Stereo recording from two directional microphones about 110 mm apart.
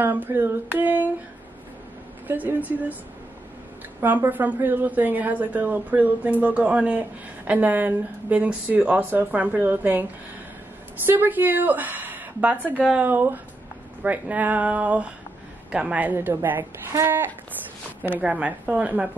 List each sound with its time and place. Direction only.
0.0 s a woman's voice: 20° right (ahead or behind)
2.2 s a woman's voice: 15° right (ahead or behind)
4.0 s a woman's voice: 15° right (ahead or behind)
11.1 s a woman's voice: 15° right (ahead or behind)